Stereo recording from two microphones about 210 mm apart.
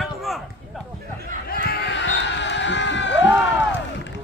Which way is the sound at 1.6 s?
55° left (ahead or behind).